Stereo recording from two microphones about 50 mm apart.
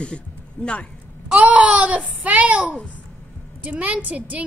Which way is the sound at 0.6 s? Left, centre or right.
Left.